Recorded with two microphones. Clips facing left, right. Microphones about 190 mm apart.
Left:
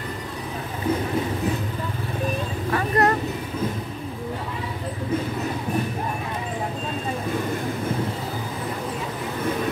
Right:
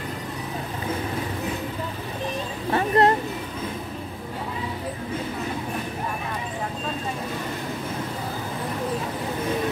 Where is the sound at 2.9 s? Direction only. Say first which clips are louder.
Right 2 dB; 25° right (ahead or behind).